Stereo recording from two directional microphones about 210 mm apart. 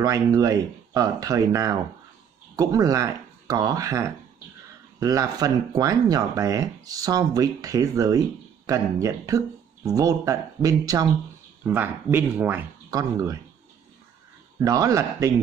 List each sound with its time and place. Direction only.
0.0 s speech: 15° right (ahead or behind)
14.6 s speech: 15° right (ahead or behind)